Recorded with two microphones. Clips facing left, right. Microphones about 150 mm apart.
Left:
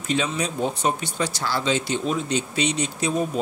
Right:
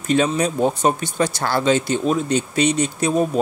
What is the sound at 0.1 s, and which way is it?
Speech, 45° right (ahead or behind).